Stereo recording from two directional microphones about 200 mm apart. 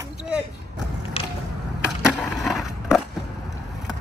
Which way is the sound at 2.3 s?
Centre (ahead or behind).